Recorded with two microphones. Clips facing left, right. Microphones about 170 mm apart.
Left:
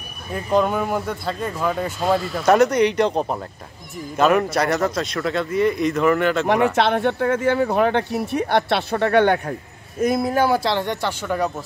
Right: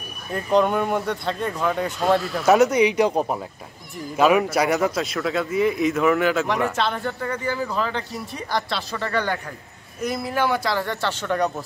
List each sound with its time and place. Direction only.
0.3 s speech: centre (ahead or behind)
6.7 s speech: 70° left (ahead or behind)
9.5 s a man's voice: 50° left (ahead or behind); by 11.5 s 5° left (ahead or behind)